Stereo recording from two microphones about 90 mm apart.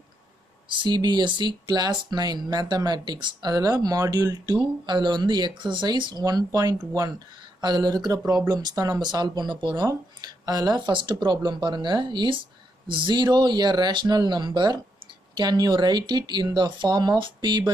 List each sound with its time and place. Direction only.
0.7 s speech: 60° right (ahead or behind)
6.2 s speech: 45° right (ahead or behind)
9.0 s speech: 55° right (ahead or behind)
9.8 s speech: 45° right (ahead or behind)
10.8 s speech: 70° right (ahead or behind)